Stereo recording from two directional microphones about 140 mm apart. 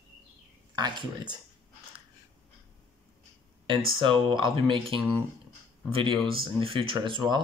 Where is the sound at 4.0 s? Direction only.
35° right (ahead or behind).